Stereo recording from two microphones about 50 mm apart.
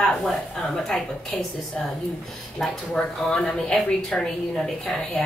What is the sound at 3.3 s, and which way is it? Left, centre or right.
Speech, centre.